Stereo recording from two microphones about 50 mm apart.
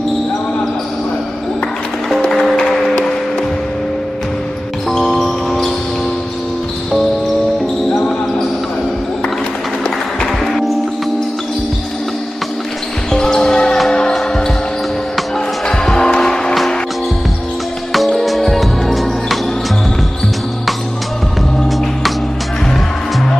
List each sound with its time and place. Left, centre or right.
2.7 s music: centre
4.9 s music: centre
10.2 s music: centre
13.1 s basketball bounce: centre
15.7 s music: centre
17.9 s music: centre